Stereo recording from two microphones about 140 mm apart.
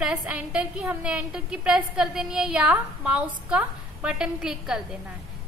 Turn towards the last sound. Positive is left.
turn(degrees=-5)  # may be behind; listen again after turning